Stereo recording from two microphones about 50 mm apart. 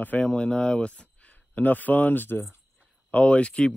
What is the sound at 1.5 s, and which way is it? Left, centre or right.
Speech, left.